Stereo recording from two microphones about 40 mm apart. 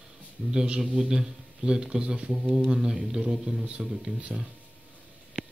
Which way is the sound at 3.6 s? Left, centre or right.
Right.